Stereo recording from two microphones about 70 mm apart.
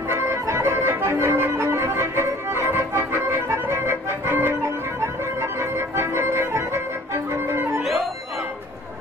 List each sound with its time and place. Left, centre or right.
0.1 s music: right